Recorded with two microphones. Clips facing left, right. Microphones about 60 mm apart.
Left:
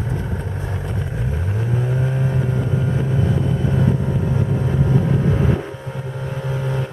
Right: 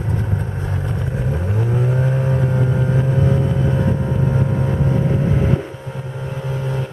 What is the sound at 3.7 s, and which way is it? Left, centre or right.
Vehicle, right.